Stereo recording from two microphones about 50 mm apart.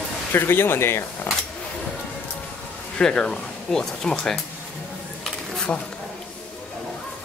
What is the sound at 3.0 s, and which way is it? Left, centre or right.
Speech, centre.